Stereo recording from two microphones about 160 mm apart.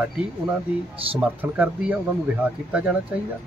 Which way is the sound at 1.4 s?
10° right (ahead or behind).